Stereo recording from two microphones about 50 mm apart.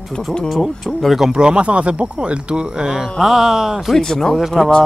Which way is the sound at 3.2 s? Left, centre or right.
Centre.